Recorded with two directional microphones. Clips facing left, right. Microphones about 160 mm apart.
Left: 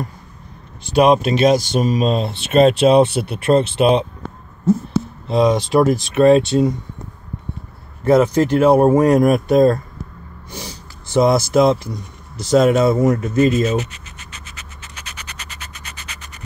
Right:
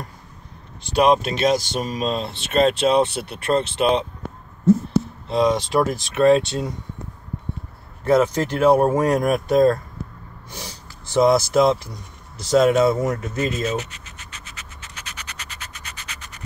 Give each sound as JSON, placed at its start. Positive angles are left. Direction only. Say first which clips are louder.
{"t": 0.9, "sound": "speech", "louder": "left 4 dB", "side_deg": 10}
{"t": 5.3, "sound": "speech", "louder": "left 4 dB", "side_deg": 5}
{"t": 8.0, "sound": "speech", "louder": "left 4 dB", "side_deg": 5}
{"t": 11.1, "sound": "speech", "louder": "left 2 dB", "side_deg": 0}
{"t": 14.5, "sound": "a sound", "louder": "left 2 dB", "side_deg": 15}